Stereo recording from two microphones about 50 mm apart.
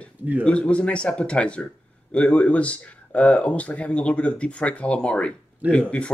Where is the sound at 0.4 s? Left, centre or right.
Left.